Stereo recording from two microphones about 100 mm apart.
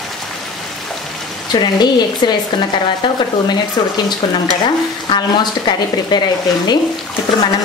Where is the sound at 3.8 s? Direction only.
50° left (ahead or behind).